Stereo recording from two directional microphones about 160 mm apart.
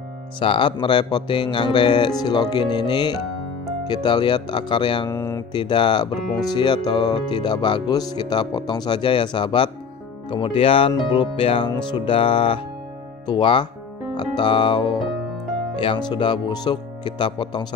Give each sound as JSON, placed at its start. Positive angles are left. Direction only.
{"t": 0.4, "sound": "speech", "side_deg": 30}
{"t": 5.1, "sound": "mantra", "side_deg": 15}
{"t": 5.5, "sound": "speech", "side_deg": 30}
{"t": 10.3, "sound": "music", "side_deg": 35}
{"t": 14.1, "sound": "speech", "side_deg": 30}